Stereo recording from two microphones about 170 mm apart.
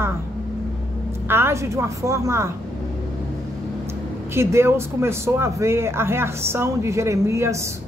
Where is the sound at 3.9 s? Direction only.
15° right (ahead or behind).